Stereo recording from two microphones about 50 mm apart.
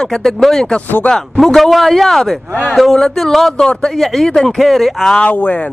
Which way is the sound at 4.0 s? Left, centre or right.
Centre.